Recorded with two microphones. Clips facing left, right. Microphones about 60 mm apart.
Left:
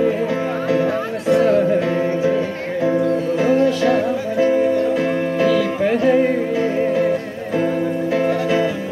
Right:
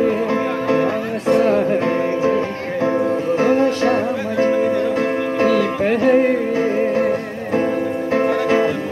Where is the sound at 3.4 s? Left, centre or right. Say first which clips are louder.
Even; right.